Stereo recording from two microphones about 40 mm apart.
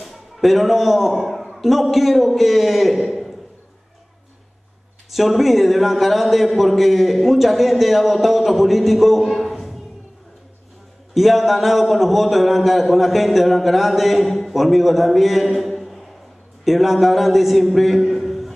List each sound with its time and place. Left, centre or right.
0.0 s a man's voice: centre
5.1 s a man's voice: centre
11.1 s a man's voice: centre